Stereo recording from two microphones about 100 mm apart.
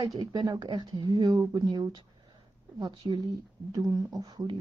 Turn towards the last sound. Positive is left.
turn(degrees=-45)  # may be behind; listen again after turning